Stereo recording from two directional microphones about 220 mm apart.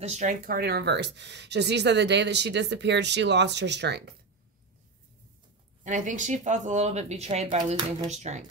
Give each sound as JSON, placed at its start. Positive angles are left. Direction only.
{"t": 0.0, "sound": "speech", "side_deg": -30}
{"t": 5.9, "sound": "speech", "side_deg": -35}